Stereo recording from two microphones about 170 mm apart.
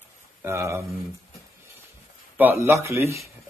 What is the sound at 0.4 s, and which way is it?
Speech, 15° right (ahead or behind).